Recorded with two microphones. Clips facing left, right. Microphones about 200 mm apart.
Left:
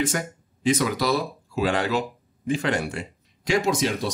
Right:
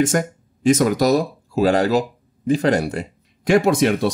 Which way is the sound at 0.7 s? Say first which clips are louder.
Right 7 dB; 45° right (ahead or behind).